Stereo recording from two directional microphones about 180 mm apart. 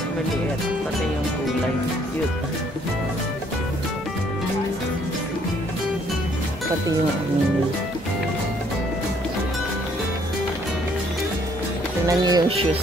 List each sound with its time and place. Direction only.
12.1 s speech: 20° right (ahead or behind)